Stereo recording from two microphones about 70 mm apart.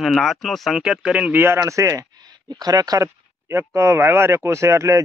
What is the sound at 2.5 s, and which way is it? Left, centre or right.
Speech, right.